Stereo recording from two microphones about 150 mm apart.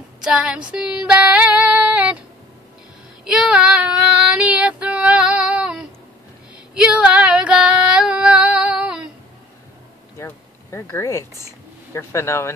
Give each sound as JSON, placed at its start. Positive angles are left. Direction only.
{"t": 0.2, "sound": "female singing", "side_deg": -5}
{"t": 3.3, "sound": "child singing", "side_deg": -5}
{"t": 6.7, "sound": "female singing", "side_deg": -5}
{"t": 10.1, "sound": "a sound", "side_deg": 20}
{"t": 11.9, "sound": "speech", "side_deg": 20}